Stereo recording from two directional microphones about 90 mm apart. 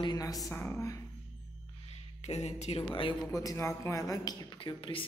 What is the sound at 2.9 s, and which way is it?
Speech, 70° left (ahead or behind).